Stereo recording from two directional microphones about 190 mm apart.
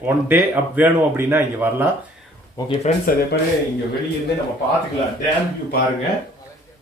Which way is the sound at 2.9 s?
35° left (ahead or behind).